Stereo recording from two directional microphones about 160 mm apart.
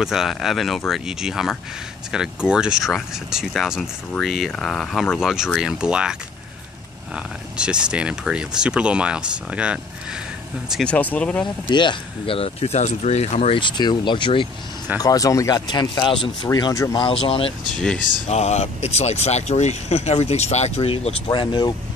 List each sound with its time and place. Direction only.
0.0 s speech: 5° right (ahead or behind)
7.5 s speech: 5° right (ahead or behind)
10.7 s speech: 5° left (ahead or behind)
11.7 s speech: 30° left (ahead or behind)
17.7 s speech: 5° left (ahead or behind)
18.3 s speech: 45° left (ahead or behind)
21.3 s speech: 30° left (ahead or behind)